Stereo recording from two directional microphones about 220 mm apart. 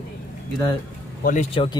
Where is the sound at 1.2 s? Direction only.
35° left (ahead or behind).